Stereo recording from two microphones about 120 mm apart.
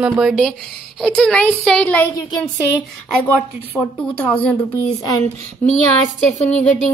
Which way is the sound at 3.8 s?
10° left (ahead or behind).